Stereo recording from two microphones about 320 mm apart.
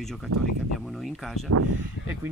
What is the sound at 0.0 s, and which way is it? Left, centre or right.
Speech, centre.